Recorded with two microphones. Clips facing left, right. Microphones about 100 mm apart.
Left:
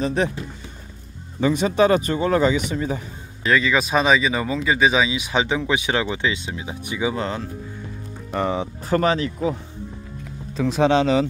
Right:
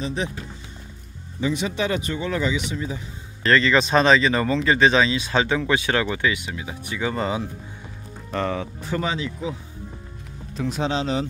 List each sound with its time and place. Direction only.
0.0 s speech: 55° left (ahead or behind)
1.4 s speech: 45° left (ahead or behind)
3.4 s speech: 5° left (ahead or behind)
7.2 s speech: 5° right (ahead or behind)
8.3 s speech: 15° left (ahead or behind)
8.8 s speech: 60° left (ahead or behind)
10.7 s speech: 70° left (ahead or behind)